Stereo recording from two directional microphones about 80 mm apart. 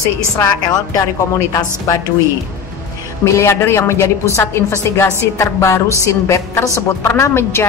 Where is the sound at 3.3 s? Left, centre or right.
Left.